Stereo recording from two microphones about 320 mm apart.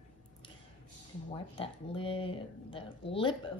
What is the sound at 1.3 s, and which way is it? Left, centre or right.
Speech, centre.